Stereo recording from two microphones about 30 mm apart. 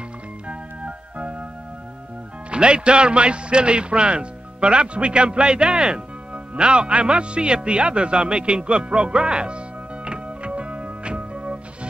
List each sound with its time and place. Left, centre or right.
0.5 s music: right
2.5 s speech: right
10.0 s music: right